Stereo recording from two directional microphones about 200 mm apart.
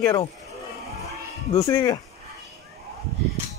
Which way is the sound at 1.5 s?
15° left (ahead or behind).